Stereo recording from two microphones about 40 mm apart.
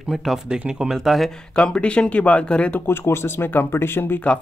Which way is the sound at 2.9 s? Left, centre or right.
Left.